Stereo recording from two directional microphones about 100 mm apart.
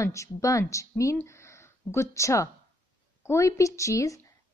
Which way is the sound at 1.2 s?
30° left (ahead or behind).